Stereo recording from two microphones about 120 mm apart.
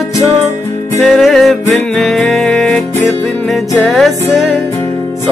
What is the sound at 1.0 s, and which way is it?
Music, centre (ahead or behind).